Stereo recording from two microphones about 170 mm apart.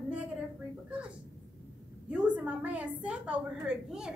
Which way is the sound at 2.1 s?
5° right (ahead or behind).